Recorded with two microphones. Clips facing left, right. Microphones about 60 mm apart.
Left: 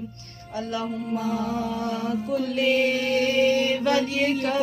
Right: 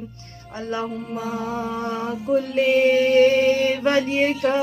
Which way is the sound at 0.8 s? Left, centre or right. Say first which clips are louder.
Even; centre.